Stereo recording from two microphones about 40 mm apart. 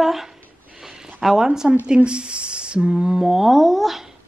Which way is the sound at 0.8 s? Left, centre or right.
Centre.